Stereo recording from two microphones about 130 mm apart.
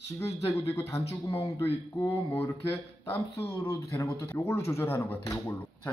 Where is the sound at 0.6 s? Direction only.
20° left (ahead or behind).